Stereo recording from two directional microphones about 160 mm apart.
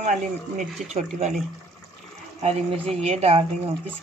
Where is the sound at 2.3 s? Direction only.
40° right (ahead or behind).